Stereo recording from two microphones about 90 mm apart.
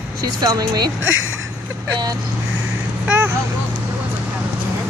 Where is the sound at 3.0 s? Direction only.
20° right (ahead or behind).